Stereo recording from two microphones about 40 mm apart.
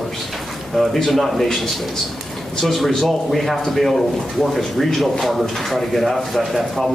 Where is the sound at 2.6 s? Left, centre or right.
Centre.